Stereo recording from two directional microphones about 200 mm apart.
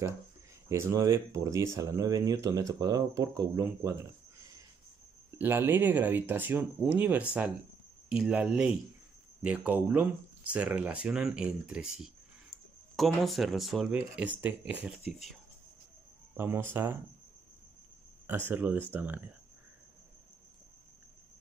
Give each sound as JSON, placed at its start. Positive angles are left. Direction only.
{"t": 0.7, "sound": "speech", "side_deg": -15}
{"t": 5.4, "sound": "speech", "side_deg": -10}
{"t": 16.3, "sound": "speech", "side_deg": -10}
{"t": 18.2, "sound": "speech", "side_deg": -10}